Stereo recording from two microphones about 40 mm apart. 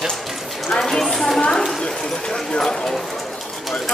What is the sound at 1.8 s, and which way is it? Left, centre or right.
Clip-clop, centre.